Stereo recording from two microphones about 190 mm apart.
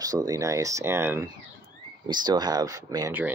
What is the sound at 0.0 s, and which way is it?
Speech, 20° right (ahead or behind).